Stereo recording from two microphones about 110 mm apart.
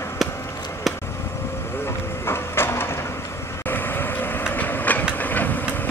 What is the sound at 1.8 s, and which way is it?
Vehicle, 20° left (ahead or behind).